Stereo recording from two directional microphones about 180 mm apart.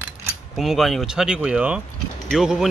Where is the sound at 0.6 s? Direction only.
Centre (ahead or behind).